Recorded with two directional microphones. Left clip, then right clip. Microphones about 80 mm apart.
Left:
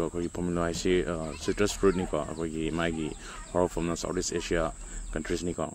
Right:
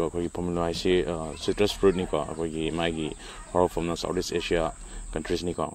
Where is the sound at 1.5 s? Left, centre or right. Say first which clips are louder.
Right 3 dB; left.